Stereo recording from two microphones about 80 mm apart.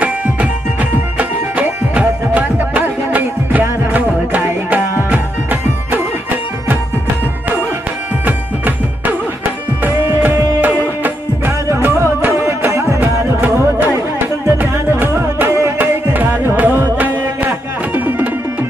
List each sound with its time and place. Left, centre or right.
1.1 s music: centre
8.3 s music: right
10.2 s music: right
11.7 s music: right
13.4 s music: right